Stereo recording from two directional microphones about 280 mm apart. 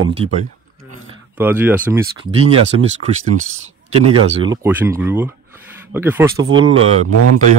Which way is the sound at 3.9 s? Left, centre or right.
Right.